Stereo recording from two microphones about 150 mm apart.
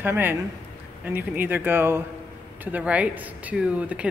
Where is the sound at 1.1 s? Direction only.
10° right (ahead or behind).